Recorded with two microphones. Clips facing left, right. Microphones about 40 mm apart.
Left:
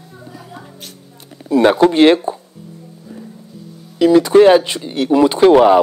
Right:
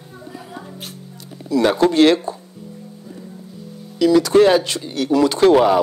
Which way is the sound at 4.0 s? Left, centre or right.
Left.